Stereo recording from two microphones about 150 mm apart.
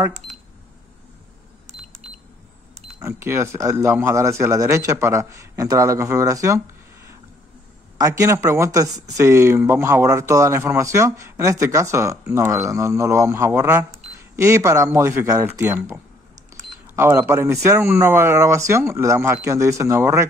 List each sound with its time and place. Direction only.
3.0 s speech: 15° right (ahead or behind)
8.0 s speech: 20° right (ahead or behind)